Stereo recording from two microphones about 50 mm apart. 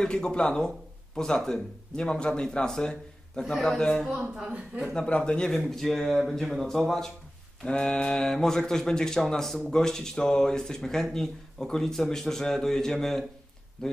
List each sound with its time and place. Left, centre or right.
0.0 s speech: centre
4.9 s speech: centre
5.8 s speech: centre
7.6 s mantra: centre
8.2 s speech: centre